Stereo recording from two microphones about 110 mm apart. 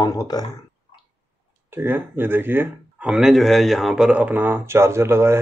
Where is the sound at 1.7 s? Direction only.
20° right (ahead or behind).